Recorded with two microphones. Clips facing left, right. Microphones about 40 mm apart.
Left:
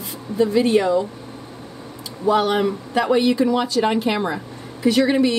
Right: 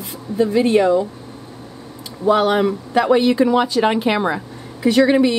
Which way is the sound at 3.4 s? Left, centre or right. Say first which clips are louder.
Right 3 dB; right.